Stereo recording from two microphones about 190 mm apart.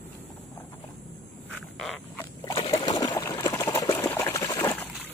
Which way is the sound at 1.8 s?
Centre (ahead or behind).